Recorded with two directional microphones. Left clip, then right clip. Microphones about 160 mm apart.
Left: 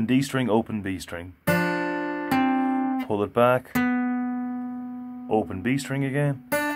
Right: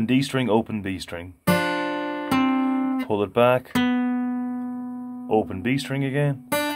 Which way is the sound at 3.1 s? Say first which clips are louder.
Right 2 dB; 10° right (ahead or behind).